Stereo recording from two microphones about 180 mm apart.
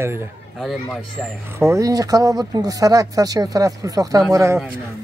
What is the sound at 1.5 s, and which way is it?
Speech, 15° right (ahead or behind).